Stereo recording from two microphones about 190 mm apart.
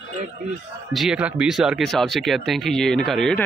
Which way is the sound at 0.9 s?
5° right (ahead or behind).